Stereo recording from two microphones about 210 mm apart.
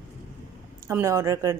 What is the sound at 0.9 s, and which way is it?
Speech, 15° right (ahead or behind).